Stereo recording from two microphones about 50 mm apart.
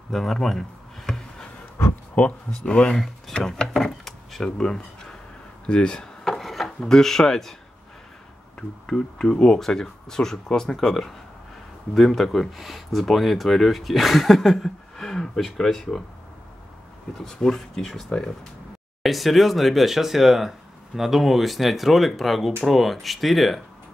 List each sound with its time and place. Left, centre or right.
0.1 s a sound: centre
2.5 s speech: centre
2.9 s speech: centre
6.2 s wood: centre
6.8 s speech: centre
8.5 s speech: centre
15.0 s speech: centre
17.2 s speech: centre